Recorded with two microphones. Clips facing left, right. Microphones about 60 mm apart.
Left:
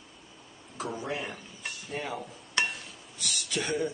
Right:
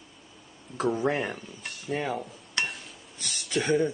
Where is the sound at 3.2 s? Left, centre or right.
Right.